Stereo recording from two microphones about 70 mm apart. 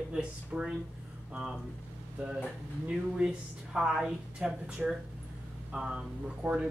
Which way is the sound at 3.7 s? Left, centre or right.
Centre.